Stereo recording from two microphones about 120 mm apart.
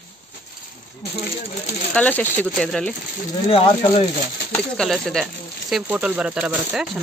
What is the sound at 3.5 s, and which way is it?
Speech, 55° left (ahead or behind).